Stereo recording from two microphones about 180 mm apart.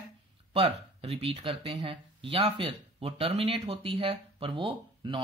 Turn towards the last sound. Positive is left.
turn(degrees=-25)  # may be behind; listen again after turning